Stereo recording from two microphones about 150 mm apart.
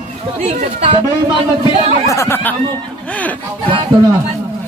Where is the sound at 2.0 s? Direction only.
20° left (ahead or behind).